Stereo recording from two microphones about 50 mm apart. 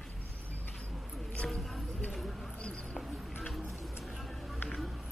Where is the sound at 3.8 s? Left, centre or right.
Centre.